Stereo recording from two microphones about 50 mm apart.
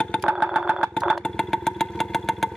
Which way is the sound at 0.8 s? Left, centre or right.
Centre.